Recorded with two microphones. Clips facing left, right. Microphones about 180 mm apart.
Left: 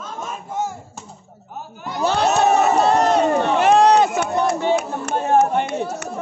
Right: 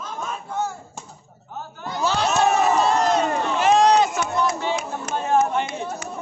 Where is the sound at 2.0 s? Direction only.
55° left (ahead or behind).